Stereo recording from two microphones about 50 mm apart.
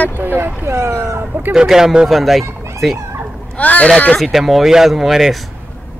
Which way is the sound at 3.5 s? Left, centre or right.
Left.